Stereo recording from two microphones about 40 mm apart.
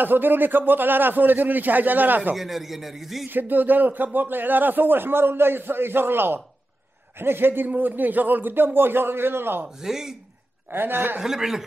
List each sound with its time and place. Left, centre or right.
0.0 s a man's voice: right
2.3 s a man's voice: centre
3.3 s speech: right
9.8 s a man's voice: centre
10.7 s speech: right
11.1 s a man's voice: centre